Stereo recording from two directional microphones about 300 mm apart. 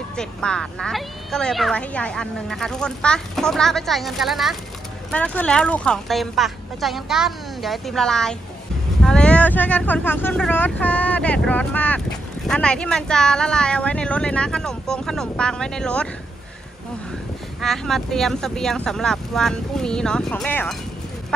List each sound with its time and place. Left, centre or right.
0.1 s speech: centre
17.6 s speech: centre